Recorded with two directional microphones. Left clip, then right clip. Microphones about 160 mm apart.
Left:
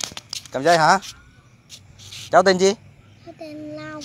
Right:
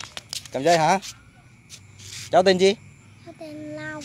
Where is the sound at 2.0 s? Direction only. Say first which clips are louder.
Left 2 dB; 5° right (ahead or behind).